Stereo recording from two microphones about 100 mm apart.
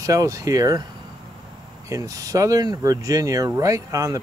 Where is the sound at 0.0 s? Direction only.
35° right (ahead or behind).